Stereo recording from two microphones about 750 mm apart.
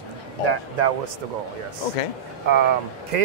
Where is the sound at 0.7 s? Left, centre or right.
Right.